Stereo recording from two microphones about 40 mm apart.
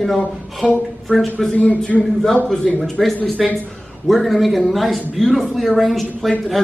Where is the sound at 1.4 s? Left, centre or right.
Centre.